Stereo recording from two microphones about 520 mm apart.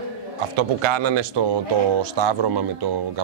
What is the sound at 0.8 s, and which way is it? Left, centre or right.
Speech, right.